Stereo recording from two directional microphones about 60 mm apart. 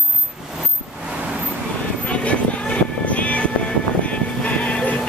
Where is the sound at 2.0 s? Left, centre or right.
Left.